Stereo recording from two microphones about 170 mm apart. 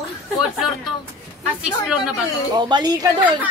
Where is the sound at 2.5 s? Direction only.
25° right (ahead or behind).